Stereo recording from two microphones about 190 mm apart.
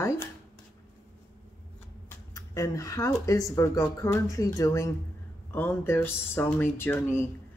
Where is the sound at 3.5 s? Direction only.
15° left (ahead or behind).